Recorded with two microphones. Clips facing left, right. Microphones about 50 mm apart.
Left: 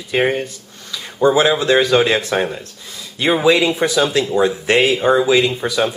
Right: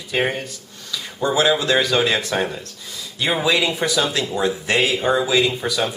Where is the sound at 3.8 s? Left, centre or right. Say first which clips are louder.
Left 4 dB; left.